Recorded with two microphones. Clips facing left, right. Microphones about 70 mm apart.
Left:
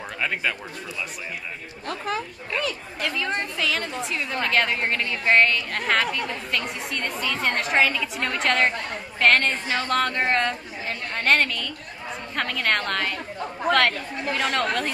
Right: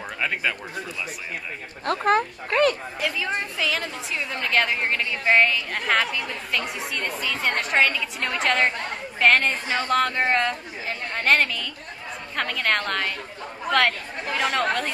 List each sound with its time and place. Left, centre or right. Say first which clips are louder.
0.2 s speech: even; centre
1.9 s speech: right 8 dB; right
3.0 s speech: even; centre